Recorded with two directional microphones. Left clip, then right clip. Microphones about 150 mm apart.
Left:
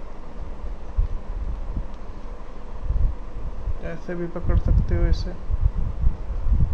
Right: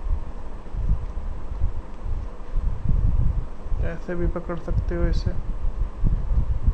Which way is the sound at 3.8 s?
10° right (ahead or behind).